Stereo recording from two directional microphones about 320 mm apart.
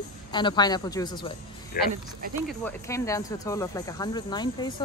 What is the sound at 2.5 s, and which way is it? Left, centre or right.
Speech, centre.